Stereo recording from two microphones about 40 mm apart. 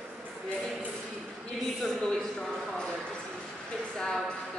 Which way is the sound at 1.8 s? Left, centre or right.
Centre.